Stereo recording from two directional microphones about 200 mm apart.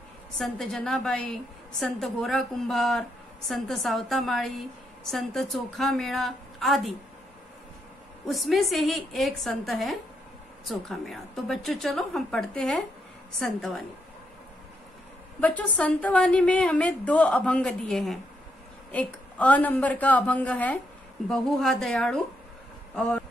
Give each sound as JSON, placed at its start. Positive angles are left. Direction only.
{"t": 0.4, "sound": "a woman's voice", "side_deg": 0}
{"t": 8.3, "sound": "a woman's voice", "side_deg": 0}
{"t": 15.4, "sound": "a woman's voice", "side_deg": 5}